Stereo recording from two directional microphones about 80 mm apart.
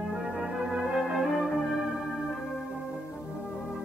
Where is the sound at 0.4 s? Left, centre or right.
Centre.